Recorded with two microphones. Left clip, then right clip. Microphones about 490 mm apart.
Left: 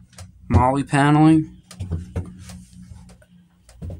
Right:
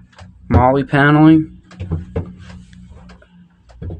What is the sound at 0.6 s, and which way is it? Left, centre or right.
Speech, left.